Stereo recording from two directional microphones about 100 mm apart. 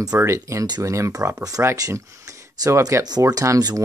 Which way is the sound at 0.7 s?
45° right (ahead or behind).